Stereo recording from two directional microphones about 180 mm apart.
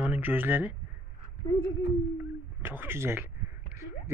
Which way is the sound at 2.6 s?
10° right (ahead or behind).